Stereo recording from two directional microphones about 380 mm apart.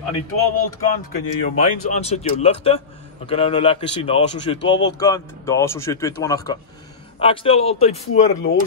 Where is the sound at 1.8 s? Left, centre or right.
Centre.